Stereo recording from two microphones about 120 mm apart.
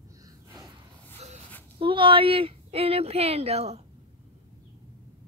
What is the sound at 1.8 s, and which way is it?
Speech, 45° right (ahead or behind).